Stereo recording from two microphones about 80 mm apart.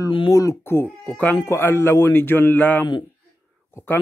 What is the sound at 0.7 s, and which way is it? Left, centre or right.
Speech, left.